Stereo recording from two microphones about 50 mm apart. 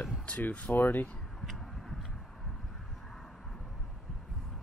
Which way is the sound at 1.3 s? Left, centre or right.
Centre.